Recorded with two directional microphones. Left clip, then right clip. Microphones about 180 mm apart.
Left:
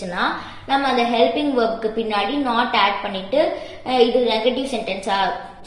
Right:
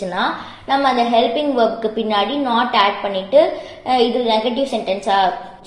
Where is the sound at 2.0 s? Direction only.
40° right (ahead or behind).